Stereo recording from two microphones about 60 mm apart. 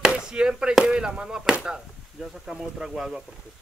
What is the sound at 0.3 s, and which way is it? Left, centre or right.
Chop, centre.